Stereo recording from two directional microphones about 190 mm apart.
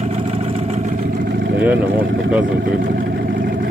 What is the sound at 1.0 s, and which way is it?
Vehicle, 55° right (ahead or behind).